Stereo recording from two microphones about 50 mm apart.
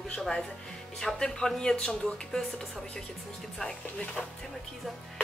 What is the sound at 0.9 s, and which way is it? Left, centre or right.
A woman's voice, centre.